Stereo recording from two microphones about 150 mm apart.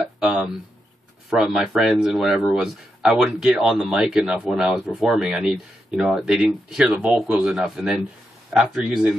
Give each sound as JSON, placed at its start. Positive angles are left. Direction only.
{"t": 0.2, "sound": "a man's voice", "side_deg": -5}